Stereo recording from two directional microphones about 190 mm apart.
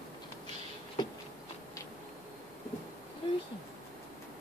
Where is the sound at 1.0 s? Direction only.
20° left (ahead or behind).